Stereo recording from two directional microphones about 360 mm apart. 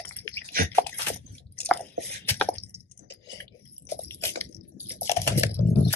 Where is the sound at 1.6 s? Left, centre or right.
Centre.